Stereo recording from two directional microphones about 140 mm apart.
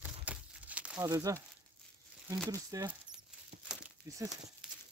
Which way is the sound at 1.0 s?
25° right (ahead or behind).